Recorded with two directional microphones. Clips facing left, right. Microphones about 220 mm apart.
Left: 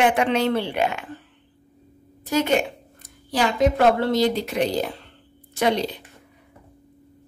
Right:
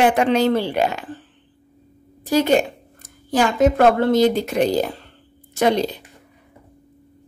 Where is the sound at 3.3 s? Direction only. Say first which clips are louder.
Right 4 dB; 50° right (ahead or behind).